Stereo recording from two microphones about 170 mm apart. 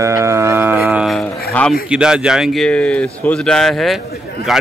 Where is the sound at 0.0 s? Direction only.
15° right (ahead or behind).